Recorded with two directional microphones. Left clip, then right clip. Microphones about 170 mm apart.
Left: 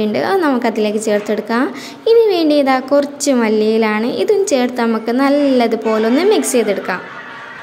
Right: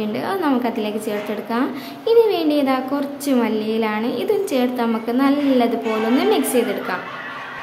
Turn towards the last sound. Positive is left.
turn(degrees=35)  # may be behind; listen again after turning